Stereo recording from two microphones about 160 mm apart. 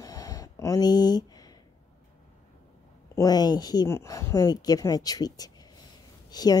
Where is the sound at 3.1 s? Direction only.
25° left (ahead or behind).